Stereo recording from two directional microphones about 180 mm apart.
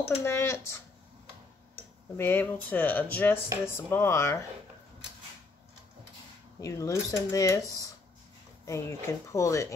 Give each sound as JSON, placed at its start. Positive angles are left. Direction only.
{"t": 0.2, "sound": "speech", "side_deg": 15}
{"t": 2.1, "sound": "speech", "side_deg": 10}
{"t": 6.6, "sound": "speech", "side_deg": 15}
{"t": 8.6, "sound": "speech", "side_deg": 15}